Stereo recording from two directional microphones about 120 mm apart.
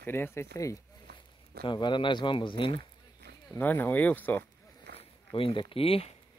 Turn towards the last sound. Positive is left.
turn(degrees=55)  # may be behind; listen again after turning